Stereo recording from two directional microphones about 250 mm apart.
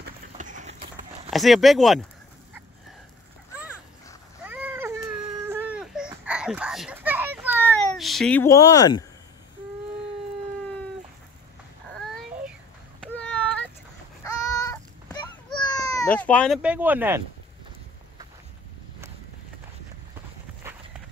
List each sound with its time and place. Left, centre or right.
0.0 s horse: right
1.3 s speech: centre
4.5 s baby cry: centre
7.6 s cat: centre
13.0 s a sound: centre
16.2 s speech: centre